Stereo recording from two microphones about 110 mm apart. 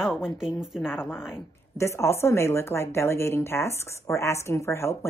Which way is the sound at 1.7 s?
25° left (ahead or behind).